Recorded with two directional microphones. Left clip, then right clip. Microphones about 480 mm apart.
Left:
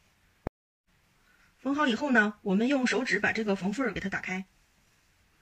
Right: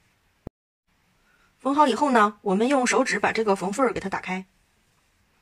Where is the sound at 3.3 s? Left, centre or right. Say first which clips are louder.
Right 7 dB; centre.